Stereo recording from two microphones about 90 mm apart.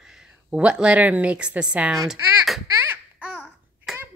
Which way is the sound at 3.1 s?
10° right (ahead or behind).